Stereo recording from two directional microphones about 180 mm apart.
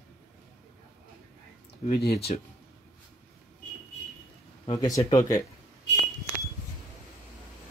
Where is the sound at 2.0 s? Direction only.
60° left (ahead or behind).